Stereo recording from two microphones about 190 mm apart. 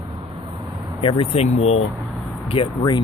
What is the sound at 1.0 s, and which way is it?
Speech, 30° left (ahead or behind).